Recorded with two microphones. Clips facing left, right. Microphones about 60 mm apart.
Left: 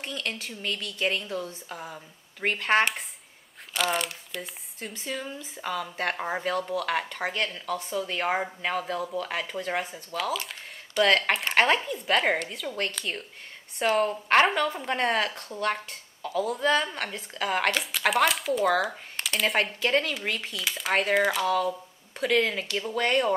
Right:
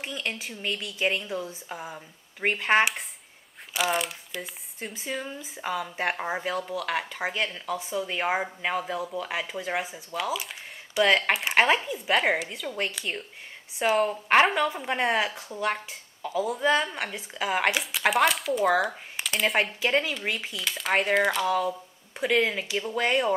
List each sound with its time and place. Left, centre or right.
0.0 s speech: centre